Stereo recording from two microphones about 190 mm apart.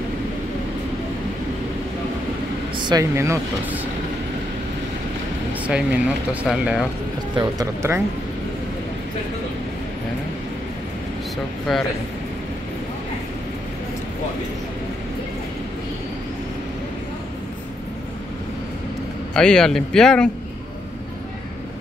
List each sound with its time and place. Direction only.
2.8 s speech: 20° right (ahead or behind)
5.7 s speech: 5° right (ahead or behind)
7.3 s speech: 15° right (ahead or behind)
11.7 s speech: centre (ahead or behind)
19.3 s speech: 5° left (ahead or behind)